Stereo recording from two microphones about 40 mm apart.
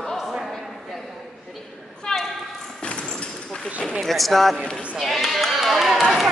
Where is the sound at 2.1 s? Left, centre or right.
Centre.